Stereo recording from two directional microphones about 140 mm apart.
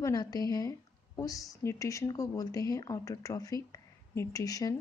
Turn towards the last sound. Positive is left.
turn(degrees=25)  # may be behind; listen again after turning